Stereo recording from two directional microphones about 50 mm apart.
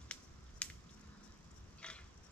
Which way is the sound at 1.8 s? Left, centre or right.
Left.